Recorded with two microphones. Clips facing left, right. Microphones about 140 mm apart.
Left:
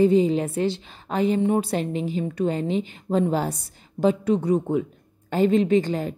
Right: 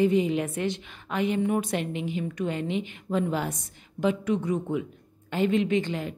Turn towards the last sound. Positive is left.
turn(degrees=40)  # may be behind; listen again after turning